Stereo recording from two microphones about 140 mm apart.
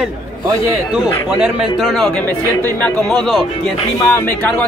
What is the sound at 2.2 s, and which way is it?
Speech, 10° left (ahead or behind).